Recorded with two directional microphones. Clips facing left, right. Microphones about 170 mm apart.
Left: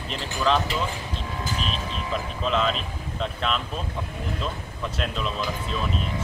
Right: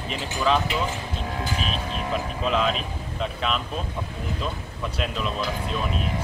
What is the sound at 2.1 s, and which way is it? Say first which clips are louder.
Speech: right 1 dB; 5° right (ahead or behind).